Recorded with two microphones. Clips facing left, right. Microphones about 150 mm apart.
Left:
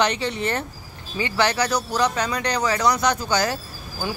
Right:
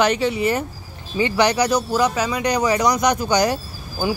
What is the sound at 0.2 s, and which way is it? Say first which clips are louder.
Speech: right 5 dB; 10° right (ahead or behind).